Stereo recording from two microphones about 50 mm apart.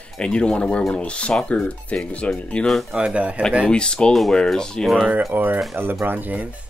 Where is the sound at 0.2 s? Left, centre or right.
Left.